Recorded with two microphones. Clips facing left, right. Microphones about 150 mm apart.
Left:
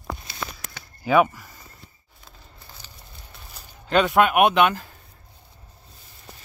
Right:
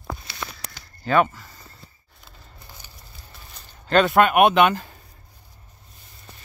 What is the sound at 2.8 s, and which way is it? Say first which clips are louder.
Fire: even; 15° right (ahead or behind).